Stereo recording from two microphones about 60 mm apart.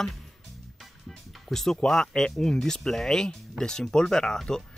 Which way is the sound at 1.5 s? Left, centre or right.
Centre.